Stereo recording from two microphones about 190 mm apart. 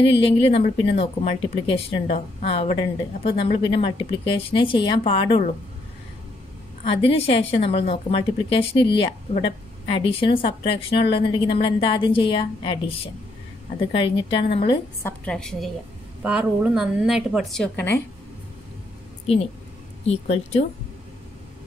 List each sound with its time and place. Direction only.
0.0 s speech: 30° left (ahead or behind)
6.9 s speech: 30° left (ahead or behind)
15.0 s a woman's voice: 5° left (ahead or behind)
20.1 s speech: 35° left (ahead or behind)